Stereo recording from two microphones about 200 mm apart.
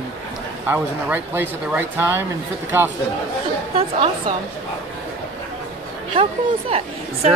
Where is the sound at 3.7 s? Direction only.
30° right (ahead or behind).